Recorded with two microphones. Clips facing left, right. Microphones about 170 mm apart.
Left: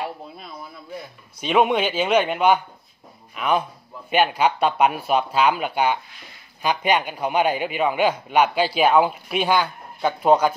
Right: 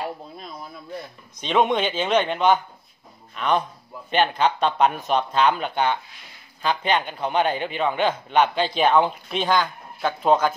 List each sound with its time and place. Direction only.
1.3 s a man's voice: 10° left (ahead or behind)